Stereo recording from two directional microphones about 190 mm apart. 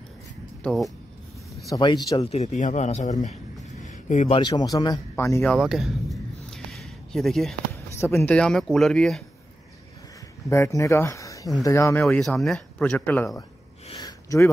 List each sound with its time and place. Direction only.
0.7 s speech: centre (ahead or behind)
1.7 s speech: 20° left (ahead or behind); by 3.3 s 40° left (ahead or behind)
3.8 s a sound: 40° left (ahead or behind)
4.4 s speech: 20° left (ahead or behind)
5.5 s a sound: centre (ahead or behind)
7.7 s speech: 15° left (ahead or behind)
10.5 s speech: 15° left (ahead or behind)
12.0 s speech: centre (ahead or behind)
13.8 s a sound: 20° left (ahead or behind)